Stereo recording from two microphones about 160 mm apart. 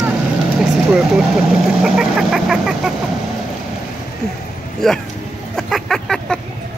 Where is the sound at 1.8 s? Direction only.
5° right (ahead or behind).